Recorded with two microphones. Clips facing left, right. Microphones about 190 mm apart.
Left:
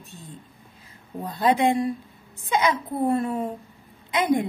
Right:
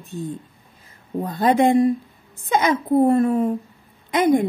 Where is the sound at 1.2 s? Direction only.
45° right (ahead or behind).